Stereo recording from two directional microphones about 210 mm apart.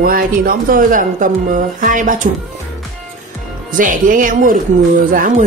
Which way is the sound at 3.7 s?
40° right (ahead or behind).